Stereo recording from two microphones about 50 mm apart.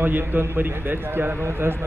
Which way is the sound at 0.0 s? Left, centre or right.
Right.